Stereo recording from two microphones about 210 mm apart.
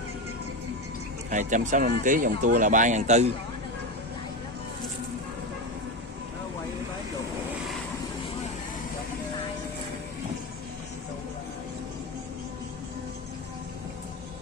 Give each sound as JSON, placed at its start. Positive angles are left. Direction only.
{"t": 1.3, "sound": "speech", "side_deg": -35}